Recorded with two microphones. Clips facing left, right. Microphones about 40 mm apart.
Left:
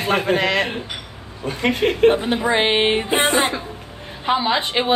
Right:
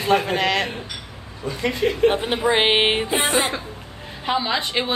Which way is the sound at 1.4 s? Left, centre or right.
Left.